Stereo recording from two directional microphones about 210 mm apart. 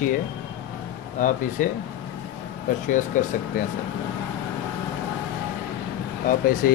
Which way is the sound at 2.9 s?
40° left (ahead or behind).